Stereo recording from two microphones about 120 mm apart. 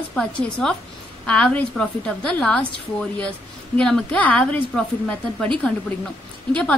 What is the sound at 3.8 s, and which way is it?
A woman's voice, 5° left (ahead or behind).